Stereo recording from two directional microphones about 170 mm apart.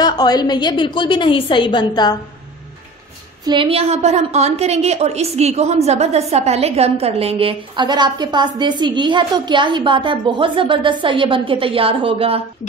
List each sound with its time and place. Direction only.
0.0 s a woman's voice: 25° left (ahead or behind)
3.4 s a woman's voice: 30° right (ahead or behind)